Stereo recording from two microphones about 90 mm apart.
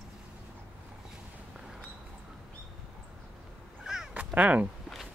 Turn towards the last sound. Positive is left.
turn(degrees=-15)  # may be behind; listen again after turning